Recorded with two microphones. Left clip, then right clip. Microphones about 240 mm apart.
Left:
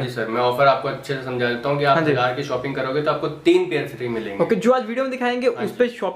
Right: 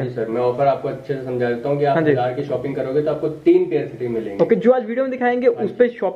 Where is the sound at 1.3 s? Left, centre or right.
Left.